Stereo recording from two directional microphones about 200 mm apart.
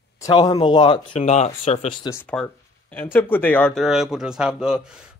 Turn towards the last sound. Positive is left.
turn(degrees=-5)  # may be behind; listen again after turning